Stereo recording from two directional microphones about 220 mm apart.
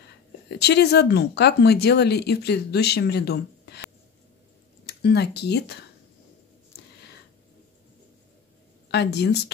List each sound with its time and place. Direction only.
0.6 s speech: 50° left (ahead or behind)
4.8 s speech: 50° left (ahead or behind)
8.9 s speech: 50° left (ahead or behind)